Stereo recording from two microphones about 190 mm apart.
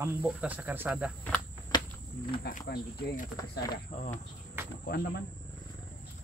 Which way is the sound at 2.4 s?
55° left (ahead or behind).